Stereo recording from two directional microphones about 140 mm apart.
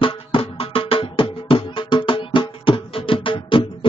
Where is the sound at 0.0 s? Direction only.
40° left (ahead or behind).